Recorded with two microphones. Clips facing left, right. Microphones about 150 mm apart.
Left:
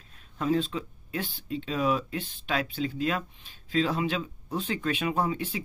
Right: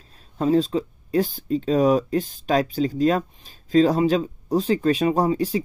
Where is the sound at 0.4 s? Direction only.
35° right (ahead or behind).